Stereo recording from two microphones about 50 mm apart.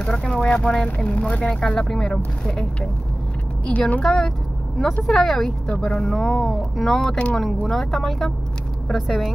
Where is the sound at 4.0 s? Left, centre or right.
Centre.